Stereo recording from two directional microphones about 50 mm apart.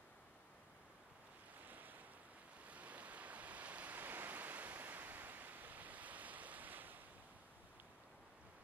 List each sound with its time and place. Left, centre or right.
1.6 s waves: right
3.9 s waves: right